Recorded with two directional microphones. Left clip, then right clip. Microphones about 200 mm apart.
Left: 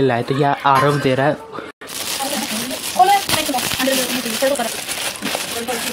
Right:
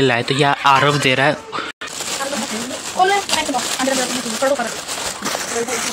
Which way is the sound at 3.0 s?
40° right (ahead or behind).